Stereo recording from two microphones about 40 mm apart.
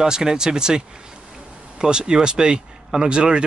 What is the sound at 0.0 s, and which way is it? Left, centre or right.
Speech, centre.